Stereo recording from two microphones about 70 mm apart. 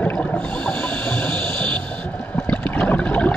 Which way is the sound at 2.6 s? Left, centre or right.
Left.